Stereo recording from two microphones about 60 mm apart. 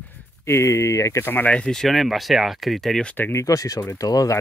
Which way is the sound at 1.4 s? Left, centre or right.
Centre.